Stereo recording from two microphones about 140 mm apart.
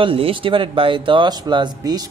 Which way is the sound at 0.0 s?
40° right (ahead or behind).